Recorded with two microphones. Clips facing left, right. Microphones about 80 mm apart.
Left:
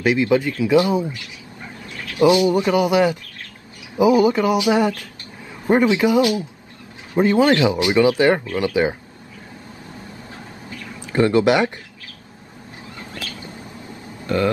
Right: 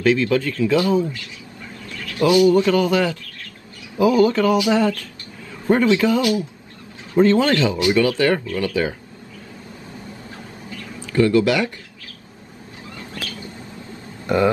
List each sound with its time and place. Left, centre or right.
0.0 s speech: centre
2.1 s speech: left
11.1 s speech: left
14.2 s speech: centre